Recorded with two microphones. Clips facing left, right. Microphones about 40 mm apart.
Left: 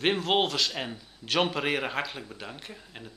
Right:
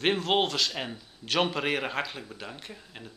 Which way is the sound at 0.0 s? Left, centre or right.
Centre.